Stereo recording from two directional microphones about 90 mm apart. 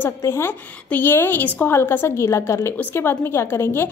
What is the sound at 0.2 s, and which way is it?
A woman's voice, 30° left (ahead or behind).